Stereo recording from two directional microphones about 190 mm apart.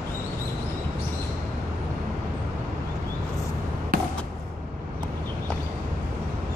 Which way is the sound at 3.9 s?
50° right (ahead or behind).